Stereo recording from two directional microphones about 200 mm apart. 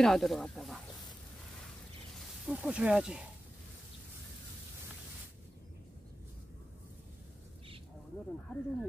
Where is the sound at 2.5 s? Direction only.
5° right (ahead or behind).